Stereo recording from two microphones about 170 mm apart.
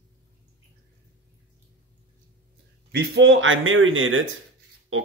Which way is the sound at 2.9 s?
80° right.